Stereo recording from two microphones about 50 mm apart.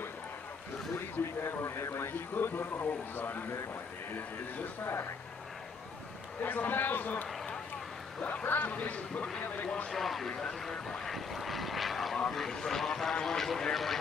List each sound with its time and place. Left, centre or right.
1.4 s speech: left
6.4 s a man's voice: left
8.5 s a man's voice: left
9.8 s speech: centre